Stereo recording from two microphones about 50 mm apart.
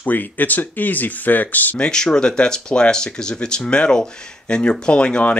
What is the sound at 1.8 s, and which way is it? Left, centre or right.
Speech, centre.